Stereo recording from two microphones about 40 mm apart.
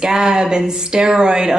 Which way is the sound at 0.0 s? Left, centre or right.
Centre.